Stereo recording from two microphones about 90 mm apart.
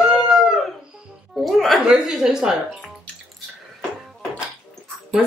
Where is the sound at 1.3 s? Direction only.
Centre (ahead or behind).